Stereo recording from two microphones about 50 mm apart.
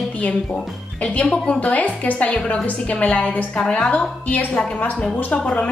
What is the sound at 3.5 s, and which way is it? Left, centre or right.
A woman's voice, centre.